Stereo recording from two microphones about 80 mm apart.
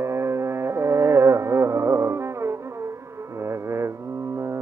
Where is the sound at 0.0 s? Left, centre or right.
Right.